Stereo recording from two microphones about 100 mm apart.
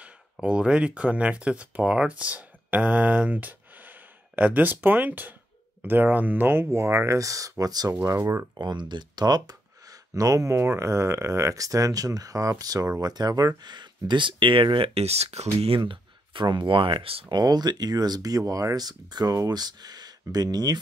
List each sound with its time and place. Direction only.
0.0 s speech: 10° right (ahead or behind); by 8.5 s 30° right (ahead or behind)
8.5 s speech: 50° right (ahead or behind); by 15.8 s 85° right
15.8 s speech: 50° right (ahead or behind)
17.3 s speech: 45° right (ahead or behind)